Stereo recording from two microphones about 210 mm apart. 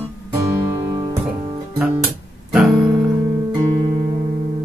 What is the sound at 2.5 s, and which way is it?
Music, centre (ahead or behind).